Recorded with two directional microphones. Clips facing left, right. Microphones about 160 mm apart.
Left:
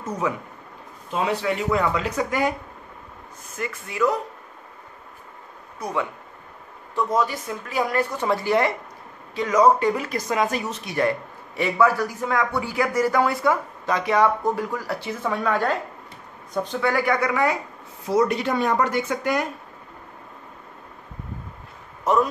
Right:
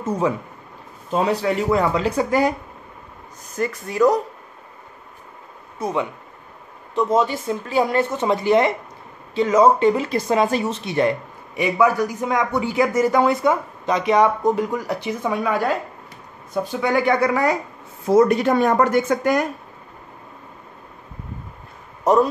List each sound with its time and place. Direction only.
0.0 s speech: 30° right (ahead or behind)
3.5 s speech: 40° right (ahead or behind)
5.8 s speech: 20° right (ahead or behind)
16.9 s speech: 25° right (ahead or behind)
18.0 s a woman's voice: 50° right (ahead or behind)
22.0 s speech: 35° right (ahead or behind)